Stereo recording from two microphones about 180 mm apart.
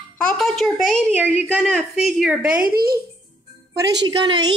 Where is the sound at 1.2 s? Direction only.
10° right (ahead or behind).